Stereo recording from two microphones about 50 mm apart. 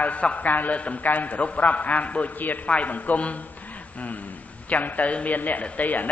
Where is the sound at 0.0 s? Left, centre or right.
Left.